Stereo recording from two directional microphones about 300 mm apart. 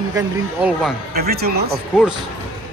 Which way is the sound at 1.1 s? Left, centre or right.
Right.